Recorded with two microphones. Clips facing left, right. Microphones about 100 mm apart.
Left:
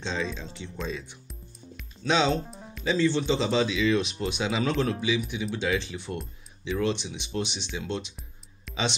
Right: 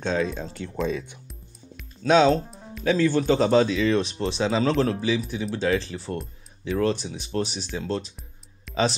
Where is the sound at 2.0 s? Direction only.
50° right (ahead or behind).